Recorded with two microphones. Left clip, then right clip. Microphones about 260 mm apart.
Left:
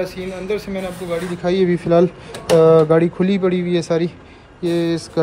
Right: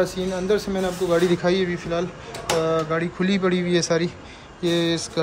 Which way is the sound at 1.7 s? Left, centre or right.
Centre.